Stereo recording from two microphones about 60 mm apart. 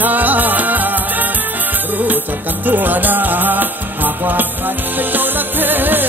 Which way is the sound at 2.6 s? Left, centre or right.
Right.